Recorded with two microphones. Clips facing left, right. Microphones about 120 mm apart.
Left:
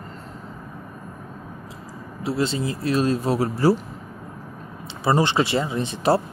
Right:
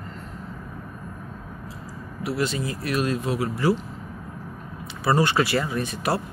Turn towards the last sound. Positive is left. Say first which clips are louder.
# left 5 dB
turn(degrees=25)  # may be behind; listen again after turning